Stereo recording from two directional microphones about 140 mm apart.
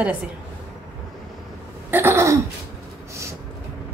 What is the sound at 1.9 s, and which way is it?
Throat clearing, 15° right (ahead or behind).